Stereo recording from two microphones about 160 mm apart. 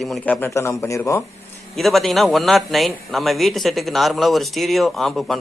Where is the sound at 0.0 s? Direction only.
5° left (ahead or behind).